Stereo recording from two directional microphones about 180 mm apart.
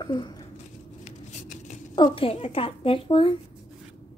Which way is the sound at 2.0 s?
30° left (ahead or behind).